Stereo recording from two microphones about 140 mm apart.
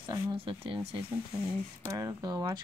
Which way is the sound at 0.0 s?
35° right (ahead or behind).